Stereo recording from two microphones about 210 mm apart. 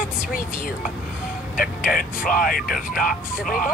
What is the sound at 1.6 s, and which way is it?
Speech, 45° left (ahead or behind).